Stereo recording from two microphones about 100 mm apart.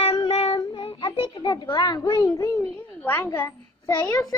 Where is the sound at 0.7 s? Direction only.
60° left (ahead or behind).